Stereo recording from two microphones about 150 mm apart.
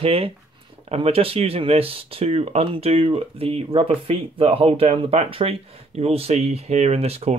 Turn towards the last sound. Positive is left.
turn(degrees=-45)  # may be behind; listen again after turning